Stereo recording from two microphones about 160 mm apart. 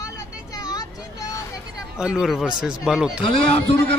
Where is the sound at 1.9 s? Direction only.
5° right (ahead or behind).